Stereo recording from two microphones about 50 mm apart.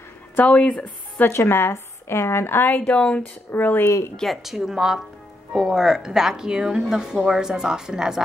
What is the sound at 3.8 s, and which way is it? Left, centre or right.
Speech, left.